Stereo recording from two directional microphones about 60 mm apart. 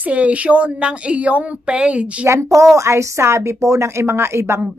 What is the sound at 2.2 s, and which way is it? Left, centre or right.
A woman's voice, right.